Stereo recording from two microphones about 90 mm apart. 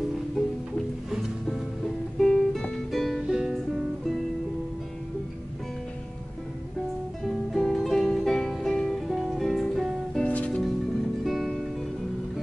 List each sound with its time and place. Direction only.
2.1 s music: 5° left (ahead or behind)
7.5 s music: centre (ahead or behind)
10.2 s music: 15° left (ahead or behind)
11.2 s music: centre (ahead or behind)